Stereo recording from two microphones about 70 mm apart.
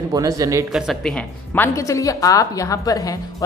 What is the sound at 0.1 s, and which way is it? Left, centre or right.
Speech, right.